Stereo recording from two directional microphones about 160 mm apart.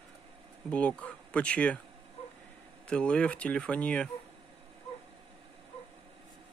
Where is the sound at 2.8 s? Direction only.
5° left (ahead or behind).